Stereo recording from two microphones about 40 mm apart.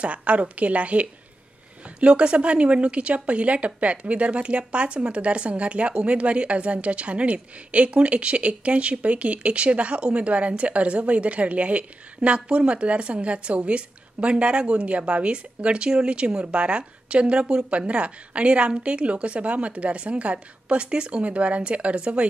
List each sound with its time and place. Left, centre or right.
0.0 s a woman's voice: right
17.6 s a woman's voice: right
21.2 s a woman's voice: right